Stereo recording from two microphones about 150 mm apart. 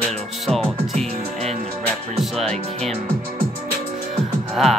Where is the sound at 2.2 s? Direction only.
5° left (ahead or behind).